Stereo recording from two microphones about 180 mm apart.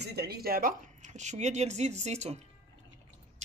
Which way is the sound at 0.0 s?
60° right (ahead or behind).